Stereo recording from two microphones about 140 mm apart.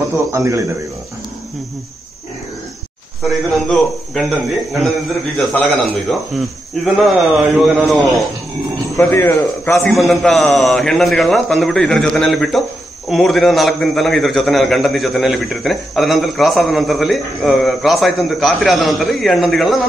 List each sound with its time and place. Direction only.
0.3 s speech: 20° right (ahead or behind)
3.3 s a man's voice: centre (ahead or behind)
6.8 s a man's voice: centre (ahead or behind)
8.9 s a man's voice: 20° left (ahead or behind)
9.8 s a man's voice: centre (ahead or behind)